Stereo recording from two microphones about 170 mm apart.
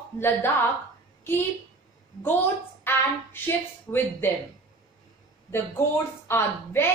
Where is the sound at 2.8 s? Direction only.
15° left (ahead or behind).